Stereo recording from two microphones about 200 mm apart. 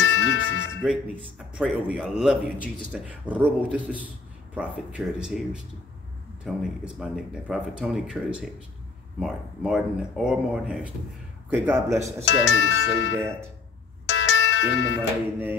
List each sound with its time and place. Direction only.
0.0 s music: 65° left (ahead or behind)
0.8 s a man's voice: 5° right (ahead or behind)
12.3 s speech: 65° left (ahead or behind)
14.0 s music: 65° left (ahead or behind)